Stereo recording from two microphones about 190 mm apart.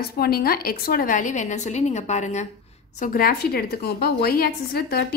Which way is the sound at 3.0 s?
50° left (ahead or behind).